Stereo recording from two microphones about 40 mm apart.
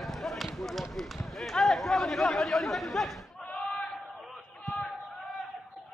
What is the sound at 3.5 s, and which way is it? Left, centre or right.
Battle cry, left.